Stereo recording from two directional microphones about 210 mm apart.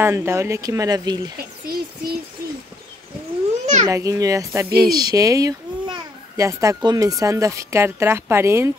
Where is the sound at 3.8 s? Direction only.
15° right (ahead or behind).